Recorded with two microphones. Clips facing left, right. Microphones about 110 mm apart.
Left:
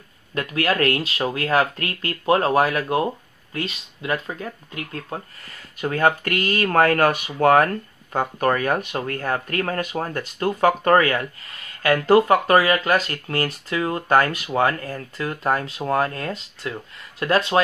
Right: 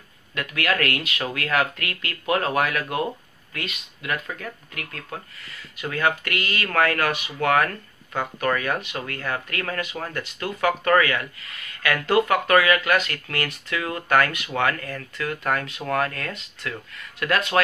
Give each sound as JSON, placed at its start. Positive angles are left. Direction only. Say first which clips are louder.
{"t": 0.3, "sound": "speech", "louder": "left 3 dB", "side_deg": 35}
{"t": 5.5, "sound": "speech", "louder": "left 5 dB", "side_deg": 45}